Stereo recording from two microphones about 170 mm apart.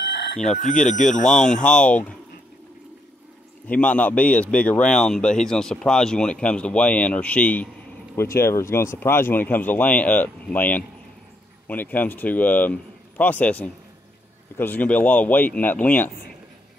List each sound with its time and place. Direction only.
0.6 s speech: 45° left (ahead or behind)
1.3 s speech: 5° left (ahead or behind)
3.6 s speech: 10° left (ahead or behind)